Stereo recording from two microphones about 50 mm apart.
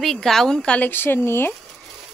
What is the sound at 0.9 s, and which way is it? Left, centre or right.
Speech, left.